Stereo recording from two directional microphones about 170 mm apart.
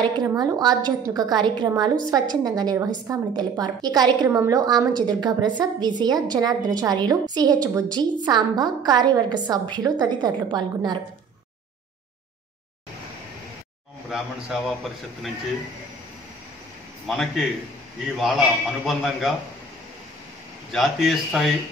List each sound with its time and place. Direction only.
0.0 s a woman's voice: 30° right (ahead or behind)
14.1 s a man's voice: centre (ahead or behind)
17.1 s a man's voice: centre (ahead or behind)
20.7 s a man's voice: centre (ahead or behind)